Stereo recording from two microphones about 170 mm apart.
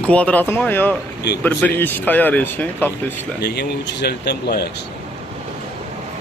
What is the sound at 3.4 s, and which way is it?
Speech, 75° left (ahead or behind).